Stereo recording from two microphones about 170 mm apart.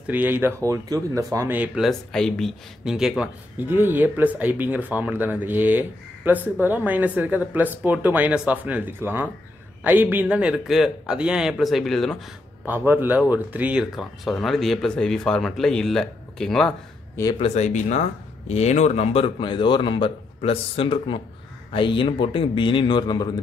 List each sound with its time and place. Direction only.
0.0 s speech: 10° right (ahead or behind)
1.9 s speech: 5° left (ahead or behind)
12.6 s speech: 10° right (ahead or behind)
17.4 s a man's voice: 40° left (ahead or behind); by 23.4 s 25° left (ahead or behind)